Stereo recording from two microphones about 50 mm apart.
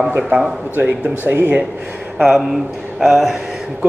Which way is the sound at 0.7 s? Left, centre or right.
Right.